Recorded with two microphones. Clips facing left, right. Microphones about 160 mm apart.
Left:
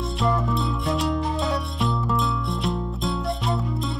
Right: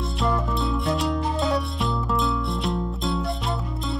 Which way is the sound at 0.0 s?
Centre (ahead or behind).